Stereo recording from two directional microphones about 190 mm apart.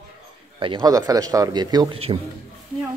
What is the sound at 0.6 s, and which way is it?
Speech, 20° right (ahead or behind).